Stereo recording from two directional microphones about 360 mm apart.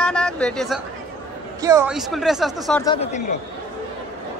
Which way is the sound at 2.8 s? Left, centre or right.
Centre.